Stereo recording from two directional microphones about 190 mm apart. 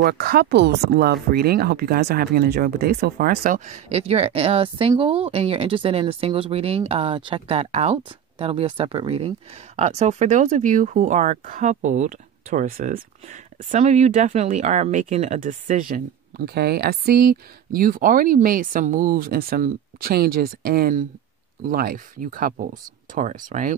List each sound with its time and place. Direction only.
0.0 s speech: 55° right (ahead or behind)